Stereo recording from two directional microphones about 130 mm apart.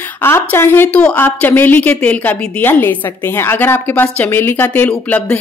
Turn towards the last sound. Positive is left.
turn(degrees=10)  # may be behind; listen again after turning